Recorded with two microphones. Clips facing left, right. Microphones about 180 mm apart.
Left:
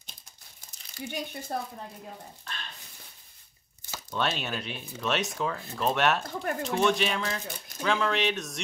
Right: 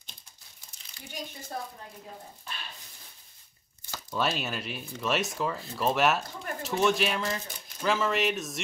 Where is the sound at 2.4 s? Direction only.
10° right (ahead or behind).